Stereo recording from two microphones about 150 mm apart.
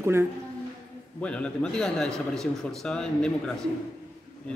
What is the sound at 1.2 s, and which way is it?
A man's voice, 5° left (ahead or behind).